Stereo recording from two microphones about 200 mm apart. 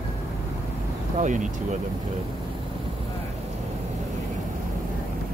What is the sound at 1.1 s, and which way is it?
Speech, 40° right (ahead or behind).